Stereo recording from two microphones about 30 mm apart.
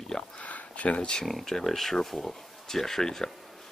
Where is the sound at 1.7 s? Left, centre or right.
Centre.